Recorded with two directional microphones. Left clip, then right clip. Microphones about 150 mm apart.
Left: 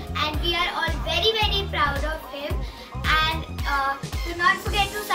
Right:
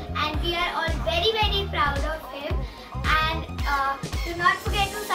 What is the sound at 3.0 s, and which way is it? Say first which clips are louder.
Music: left 1 dB; 15° left (ahead or behind).